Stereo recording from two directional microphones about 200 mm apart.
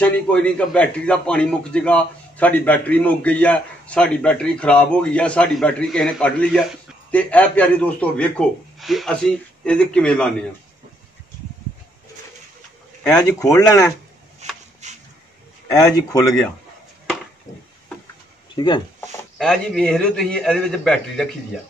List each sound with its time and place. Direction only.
0.0 s a man's voice: 5° left (ahead or behind)
13.0 s a man's voice: 5° left (ahead or behind)
13.4 s speech: 15° left (ahead or behind)
14.4 s chopping: 35° right (ahead or behind)
14.8 s a sound: 35° right (ahead or behind)
15.7 s speech: 15° left (ahead or behind)
18.5 s speech: 20° left (ahead or behind)
19.3 s a man's voice: centre (ahead or behind)